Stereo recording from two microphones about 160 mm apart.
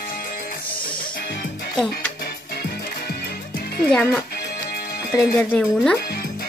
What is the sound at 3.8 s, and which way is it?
Speech, 5° left (ahead or behind).